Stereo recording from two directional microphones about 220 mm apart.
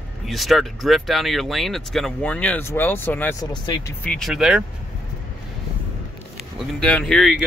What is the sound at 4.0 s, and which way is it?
Speech, 5° left (ahead or behind).